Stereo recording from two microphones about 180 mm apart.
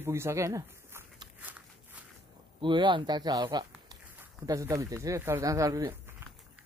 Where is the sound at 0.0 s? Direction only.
15° right (ahead or behind).